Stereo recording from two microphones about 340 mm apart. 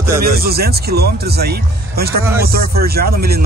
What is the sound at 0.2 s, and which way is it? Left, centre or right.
Speech, right.